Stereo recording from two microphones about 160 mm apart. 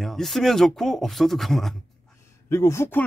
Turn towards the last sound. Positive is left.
turn(degrees=15)  # may be behind; listen again after turning